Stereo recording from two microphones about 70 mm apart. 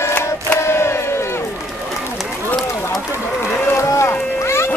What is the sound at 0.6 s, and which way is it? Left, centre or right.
Crowd, left.